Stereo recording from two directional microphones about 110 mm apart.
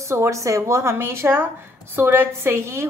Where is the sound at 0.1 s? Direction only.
25° right (ahead or behind).